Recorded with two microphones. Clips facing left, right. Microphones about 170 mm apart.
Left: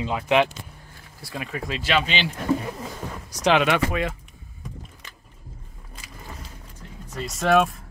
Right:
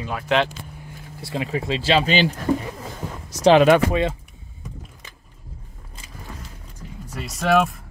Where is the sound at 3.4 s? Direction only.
35° right (ahead or behind).